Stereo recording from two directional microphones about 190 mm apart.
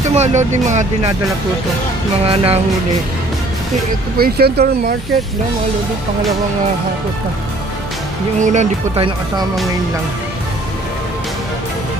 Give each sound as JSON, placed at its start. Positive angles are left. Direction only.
{"t": 0.0, "sound": "speech", "side_deg": -35}
{"t": 2.2, "sound": "speech", "side_deg": -30}
{"t": 4.2, "sound": "speech", "side_deg": -55}
{"t": 8.4, "sound": "speech", "side_deg": -40}